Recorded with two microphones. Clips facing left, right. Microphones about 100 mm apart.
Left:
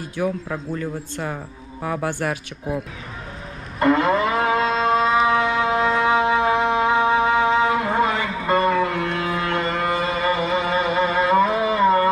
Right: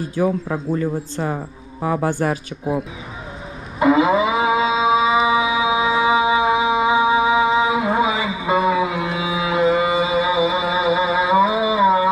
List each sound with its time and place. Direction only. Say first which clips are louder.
0.1 s speech: right 3 dB; 35° right (ahead or behind)
2.0 s speech: right 4 dB; 40° right (ahead or behind)
3.8 s moo: right 3 dB; 5° right (ahead or behind)